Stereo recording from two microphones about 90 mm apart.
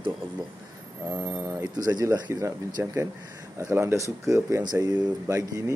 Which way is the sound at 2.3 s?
35° right (ahead or behind).